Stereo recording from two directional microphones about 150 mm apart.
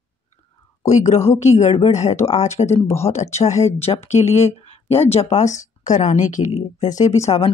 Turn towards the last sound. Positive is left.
turn(degrees=45)  # may be behind; listen again after turning